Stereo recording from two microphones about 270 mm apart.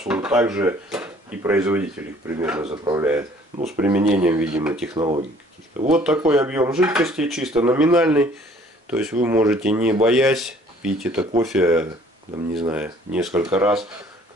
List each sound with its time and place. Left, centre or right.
0.0 s speech: centre
4.9 s speech: centre
5.9 s speech: centre